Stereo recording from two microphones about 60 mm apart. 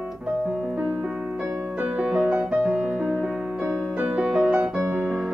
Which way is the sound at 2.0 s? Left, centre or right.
Centre.